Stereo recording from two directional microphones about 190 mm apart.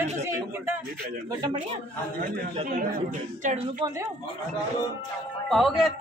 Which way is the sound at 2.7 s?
45° right (ahead or behind).